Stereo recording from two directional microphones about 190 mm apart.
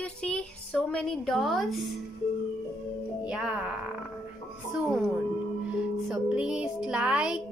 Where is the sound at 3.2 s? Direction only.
5° right (ahead or behind).